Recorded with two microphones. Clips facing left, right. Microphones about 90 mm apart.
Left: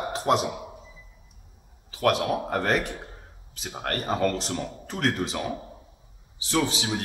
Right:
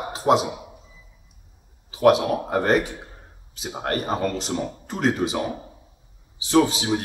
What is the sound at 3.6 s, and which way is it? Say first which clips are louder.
Speech: right 4 dB; 20° right (ahead or behind).